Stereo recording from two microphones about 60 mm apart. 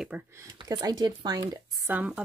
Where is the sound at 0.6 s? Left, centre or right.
Right.